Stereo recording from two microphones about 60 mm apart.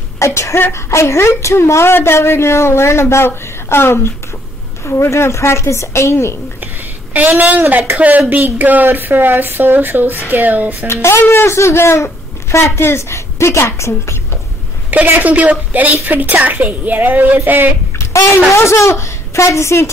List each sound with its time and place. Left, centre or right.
0.2 s a woman's voice: left
7.2 s speech: right
7.7 s speech: right
8.3 s speech: right
10.9 s speech: left
14.9 s speech: right
17.9 s a child's voice: left